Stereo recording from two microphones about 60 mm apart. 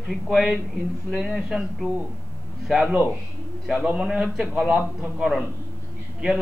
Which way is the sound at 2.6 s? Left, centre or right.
Centre.